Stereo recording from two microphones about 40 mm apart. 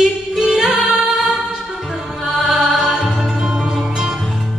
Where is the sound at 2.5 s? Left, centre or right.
Centre.